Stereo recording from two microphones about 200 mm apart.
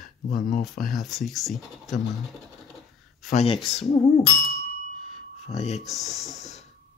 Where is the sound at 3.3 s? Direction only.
30° left (ahead or behind).